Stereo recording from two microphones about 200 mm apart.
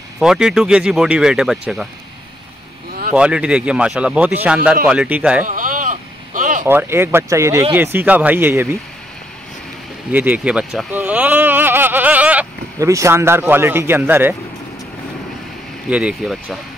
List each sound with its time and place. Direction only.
0.2 s speech: centre (ahead or behind)
3.2 s speech: 5° right (ahead or behind)
5.5 s a sound: 40° right (ahead or behind)
6.6 s speech: 10° right (ahead or behind)
10.1 s speech: 10° right (ahead or behind)
15.9 s speech: 5° right (ahead or behind)